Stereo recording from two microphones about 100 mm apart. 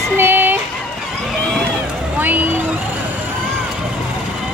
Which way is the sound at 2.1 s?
20° right (ahead or behind).